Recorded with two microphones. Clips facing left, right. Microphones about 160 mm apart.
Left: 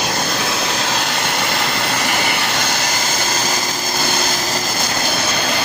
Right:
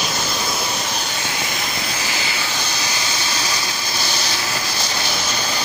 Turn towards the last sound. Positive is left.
turn(degrees=60)  # may be behind; listen again after turning